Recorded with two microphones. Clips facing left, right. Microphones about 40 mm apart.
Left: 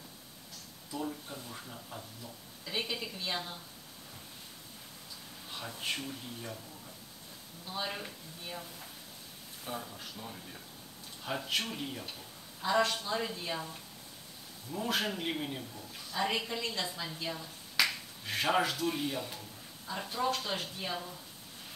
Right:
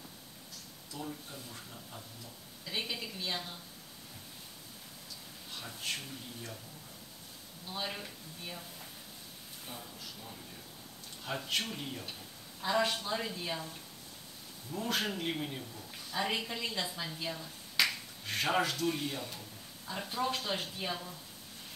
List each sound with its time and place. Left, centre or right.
0.9 s speech: centre
2.6 s speech: centre
5.5 s speech: centre
7.6 s speech: centre
11.2 s speech: centre
14.7 s speech: centre
16.1 s speech: centre